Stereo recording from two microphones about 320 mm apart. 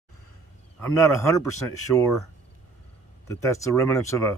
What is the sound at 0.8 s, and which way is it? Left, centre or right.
Speech, left.